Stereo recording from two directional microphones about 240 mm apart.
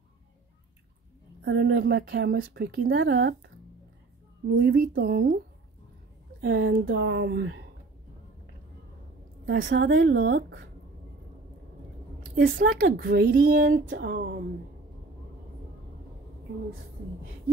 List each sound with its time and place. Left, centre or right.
1.4 s a woman's voice: right
6.4 s speech: right
9.5 s speech: right
12.4 s a woman's voice: right